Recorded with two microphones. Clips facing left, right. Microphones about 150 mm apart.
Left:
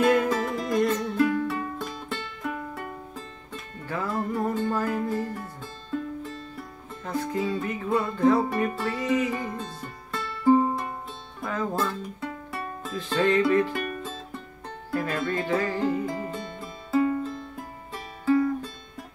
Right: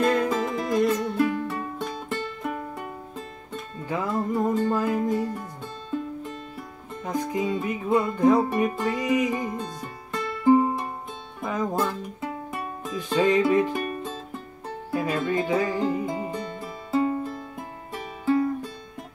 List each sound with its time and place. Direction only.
0.0 s music: 5° left (ahead or behind); by 1.4 s 10° right (ahead or behind)
1.5 s music: centre (ahead or behind)
3.8 s music: 15° right (ahead or behind)
16.9 s music: 25° right (ahead or behind)
17.2 s music: 15° right (ahead or behind)